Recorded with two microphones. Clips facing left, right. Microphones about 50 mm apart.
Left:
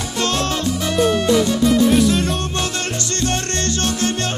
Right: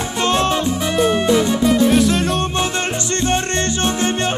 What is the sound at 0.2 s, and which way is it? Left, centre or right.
Music, right.